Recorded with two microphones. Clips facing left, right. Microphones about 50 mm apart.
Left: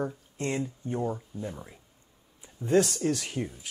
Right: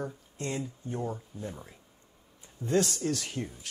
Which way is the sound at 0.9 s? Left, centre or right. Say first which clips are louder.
Left 4 dB; centre.